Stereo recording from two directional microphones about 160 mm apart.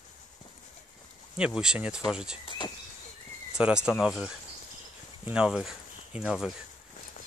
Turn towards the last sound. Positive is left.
turn(degrees=-5)  # may be behind; listen again after turning